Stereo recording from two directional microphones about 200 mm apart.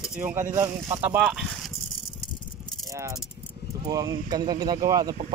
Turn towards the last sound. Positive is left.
turn(degrees=-20)  # may be behind; listen again after turning